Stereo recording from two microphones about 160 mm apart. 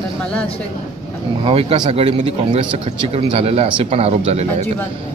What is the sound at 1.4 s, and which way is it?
A man's voice, 40° right (ahead or behind).